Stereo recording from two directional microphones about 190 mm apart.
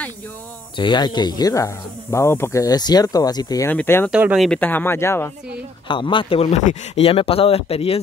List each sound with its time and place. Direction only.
0.7 s speech: 25° left (ahead or behind)
4.1 s speech: 5° right (ahead or behind)
4.5 s speech: 10° left (ahead or behind)
5.9 s speech: 25° left (ahead or behind)